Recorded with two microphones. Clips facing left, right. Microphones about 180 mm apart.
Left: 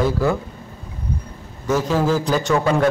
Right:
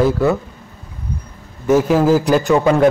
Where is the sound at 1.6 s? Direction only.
15° right (ahead or behind).